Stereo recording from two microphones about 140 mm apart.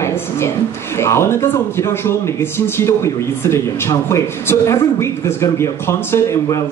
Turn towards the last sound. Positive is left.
turn(degrees=20)  # may be behind; listen again after turning